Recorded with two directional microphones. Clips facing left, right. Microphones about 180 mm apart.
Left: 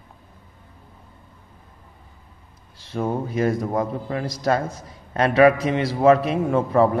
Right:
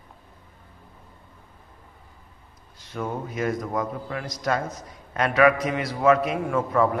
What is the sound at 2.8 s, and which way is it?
A man's voice, 30° left (ahead or behind).